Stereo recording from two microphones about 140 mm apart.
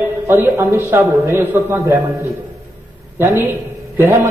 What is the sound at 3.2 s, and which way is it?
Speech, 15° right (ahead or behind).